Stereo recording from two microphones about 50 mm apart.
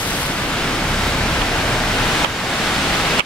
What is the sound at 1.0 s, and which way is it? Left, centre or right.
Pink noise, centre.